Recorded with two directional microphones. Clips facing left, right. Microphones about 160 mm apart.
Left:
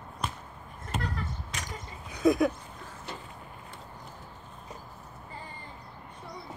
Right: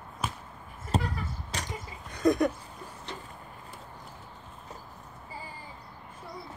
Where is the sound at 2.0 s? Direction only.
5° left (ahead or behind).